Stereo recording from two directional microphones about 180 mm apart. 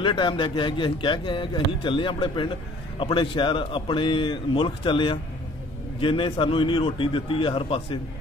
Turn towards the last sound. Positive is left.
turn(degrees=30)  # may be behind; listen again after turning